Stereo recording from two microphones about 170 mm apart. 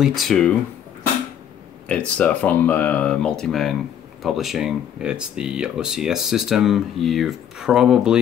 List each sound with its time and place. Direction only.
0.0 s speech: centre (ahead or behind)
1.9 s speech: 5° left (ahead or behind)